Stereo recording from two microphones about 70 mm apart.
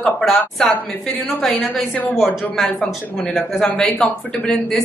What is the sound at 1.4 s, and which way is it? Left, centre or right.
Speech, centre.